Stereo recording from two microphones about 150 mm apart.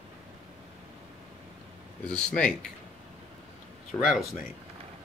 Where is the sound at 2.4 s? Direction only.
5° left (ahead or behind).